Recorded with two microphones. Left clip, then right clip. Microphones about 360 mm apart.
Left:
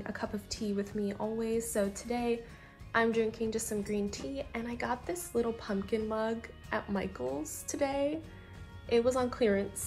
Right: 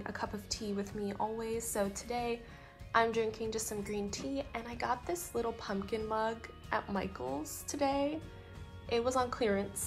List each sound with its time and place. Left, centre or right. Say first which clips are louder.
0.0 s a woman's voice: left 1 dB; centre